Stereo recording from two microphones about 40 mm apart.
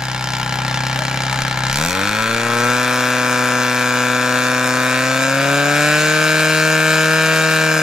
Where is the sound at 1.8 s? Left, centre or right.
Centre.